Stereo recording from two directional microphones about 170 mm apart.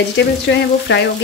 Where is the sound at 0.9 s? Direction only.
90° left.